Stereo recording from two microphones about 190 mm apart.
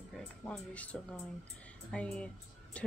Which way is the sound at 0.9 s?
5° left (ahead or behind).